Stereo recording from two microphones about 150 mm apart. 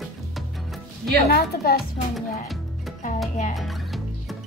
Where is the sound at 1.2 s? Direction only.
90° left.